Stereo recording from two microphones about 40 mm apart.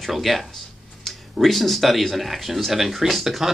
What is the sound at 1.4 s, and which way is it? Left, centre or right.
Speech, centre.